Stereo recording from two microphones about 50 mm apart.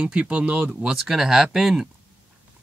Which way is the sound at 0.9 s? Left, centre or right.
Centre.